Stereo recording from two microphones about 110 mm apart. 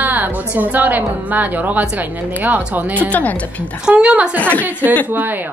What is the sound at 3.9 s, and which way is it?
Speech, 10° right (ahead or behind).